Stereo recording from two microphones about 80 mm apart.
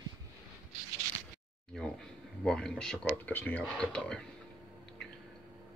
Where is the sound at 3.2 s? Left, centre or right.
Left.